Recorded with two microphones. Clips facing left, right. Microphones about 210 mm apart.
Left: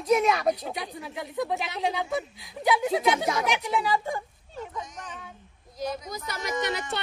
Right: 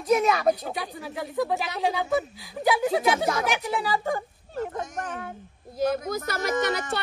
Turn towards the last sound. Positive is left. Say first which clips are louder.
# right 4 dB
turn(degrees=-50)  # may be behind; listen again after turning